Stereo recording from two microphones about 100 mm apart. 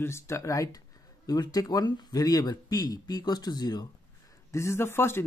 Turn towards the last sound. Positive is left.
turn(degrees=25)  # may be behind; listen again after turning